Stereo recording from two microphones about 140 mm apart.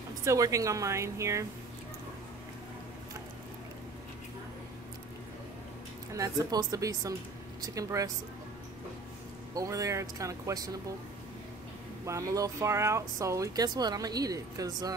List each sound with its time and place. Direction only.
0.2 s speech: 20° right (ahead or behind)
6.1 s speech: 25° right (ahead or behind)
9.5 s speech: 25° right (ahead or behind)
12.1 s speech: 25° right (ahead or behind)